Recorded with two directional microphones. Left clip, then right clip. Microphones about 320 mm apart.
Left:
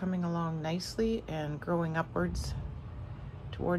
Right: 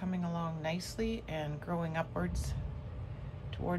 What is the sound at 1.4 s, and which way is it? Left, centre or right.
Speech, left.